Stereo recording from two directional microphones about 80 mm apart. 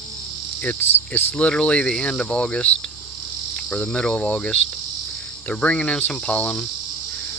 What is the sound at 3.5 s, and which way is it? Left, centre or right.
Cricket, centre.